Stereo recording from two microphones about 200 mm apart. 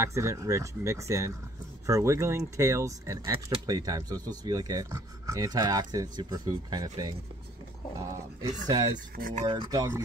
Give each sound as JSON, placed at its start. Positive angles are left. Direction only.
{"t": 0.0, "sound": "speech", "side_deg": -15}
{"t": 9.1, "sound": "speech", "side_deg": -45}
{"t": 9.4, "sound": "speech", "side_deg": -20}